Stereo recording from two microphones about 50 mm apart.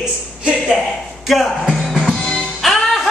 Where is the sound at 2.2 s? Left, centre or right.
Centre.